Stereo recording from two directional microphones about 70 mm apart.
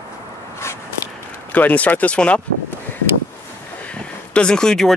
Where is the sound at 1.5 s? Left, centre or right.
Left.